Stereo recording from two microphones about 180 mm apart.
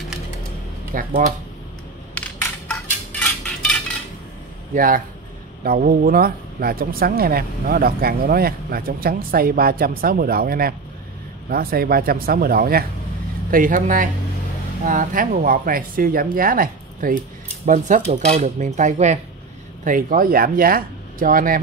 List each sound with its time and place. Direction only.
0.9 s speech: 50° right (ahead or behind)
2.7 s a sound: 5° left (ahead or behind)
4.7 s speech: 50° right (ahead or behind)